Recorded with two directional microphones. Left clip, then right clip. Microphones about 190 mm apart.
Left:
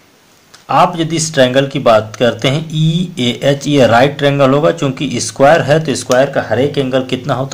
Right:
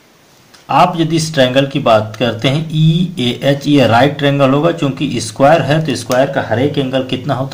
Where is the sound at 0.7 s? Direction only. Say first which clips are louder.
Even; 30° left (ahead or behind).